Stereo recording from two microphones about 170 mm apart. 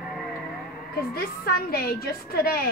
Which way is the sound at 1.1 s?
60° left (ahead or behind).